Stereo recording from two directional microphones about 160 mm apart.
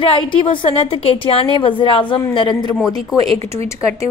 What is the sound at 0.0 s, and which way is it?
A woman's voice, 30° left (ahead or behind).